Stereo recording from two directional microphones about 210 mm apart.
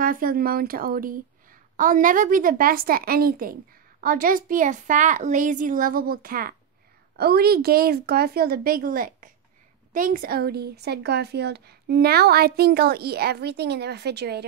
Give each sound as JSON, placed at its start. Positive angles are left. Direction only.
{"t": 0.0, "sound": "a woman's voice", "side_deg": -40}